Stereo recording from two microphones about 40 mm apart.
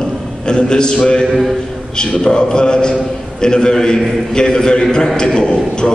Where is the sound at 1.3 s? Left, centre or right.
Centre.